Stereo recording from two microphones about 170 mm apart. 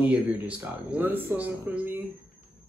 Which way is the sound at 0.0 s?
10° right (ahead or behind).